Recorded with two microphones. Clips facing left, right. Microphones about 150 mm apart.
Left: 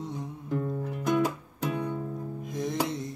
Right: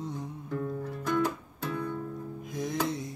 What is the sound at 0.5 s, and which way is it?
Music, 15° left (ahead or behind).